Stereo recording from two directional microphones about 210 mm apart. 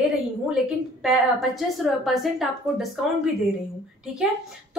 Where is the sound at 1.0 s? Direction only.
Centre (ahead or behind).